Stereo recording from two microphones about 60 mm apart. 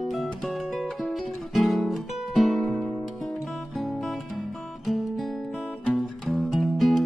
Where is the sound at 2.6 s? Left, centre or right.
Centre.